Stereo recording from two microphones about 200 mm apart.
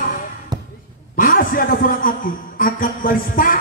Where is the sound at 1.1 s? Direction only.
45° left (ahead or behind).